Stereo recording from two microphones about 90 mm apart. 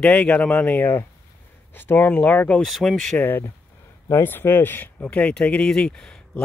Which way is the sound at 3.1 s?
20° left (ahead or behind).